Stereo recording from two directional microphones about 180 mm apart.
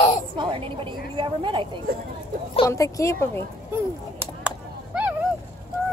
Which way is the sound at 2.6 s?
15° left (ahead or behind).